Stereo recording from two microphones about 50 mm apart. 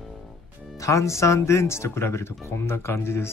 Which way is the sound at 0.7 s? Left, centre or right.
Left.